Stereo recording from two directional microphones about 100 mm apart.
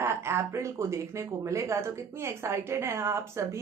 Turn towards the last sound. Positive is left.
turn(degrees=-25)  # may be behind; listen again after turning